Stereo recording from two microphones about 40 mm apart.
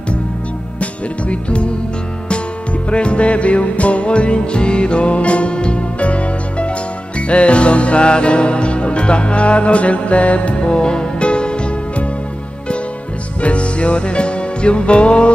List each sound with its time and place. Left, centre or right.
0.7 s speech: left
2.9 s music: left
10.6 s music: left
13.4 s music: left